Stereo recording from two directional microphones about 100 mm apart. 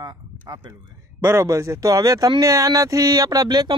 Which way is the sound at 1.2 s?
30° right (ahead or behind).